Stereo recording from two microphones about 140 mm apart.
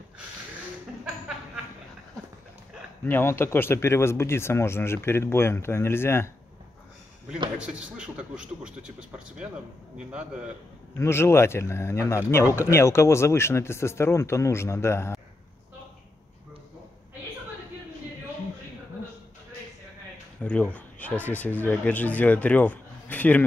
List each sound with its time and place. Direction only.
3.1 s speech: 15° left (ahead or behind)
7.5 s a man's voice: 10° right (ahead or behind)
9.9 s a man's voice: 5° right (ahead or behind)
11.0 s speech: 20° left (ahead or behind)
20.4 s speech: 10° left (ahead or behind)